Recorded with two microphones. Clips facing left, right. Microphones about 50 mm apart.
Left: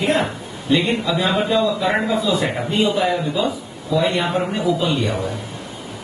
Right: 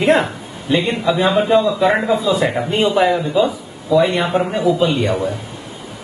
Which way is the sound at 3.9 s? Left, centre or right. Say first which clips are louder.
Right 4 dB; right.